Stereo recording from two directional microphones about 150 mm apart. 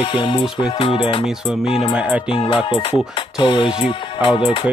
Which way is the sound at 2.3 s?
35° left (ahead or behind).